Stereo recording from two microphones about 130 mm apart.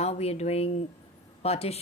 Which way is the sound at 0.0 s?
55° left (ahead or behind).